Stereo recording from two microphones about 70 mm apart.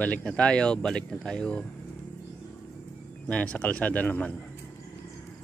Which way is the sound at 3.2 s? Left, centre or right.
Centre.